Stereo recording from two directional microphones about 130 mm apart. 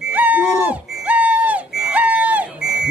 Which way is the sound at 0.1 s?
10° right (ahead or behind).